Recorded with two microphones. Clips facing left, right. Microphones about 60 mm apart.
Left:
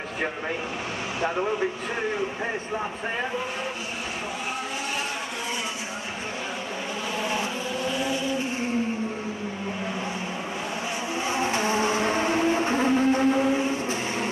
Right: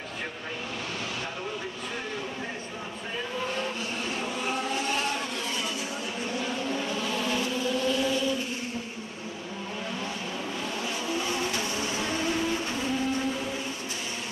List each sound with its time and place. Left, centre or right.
7.2 s vehicle: left
11.1 s vehicle: left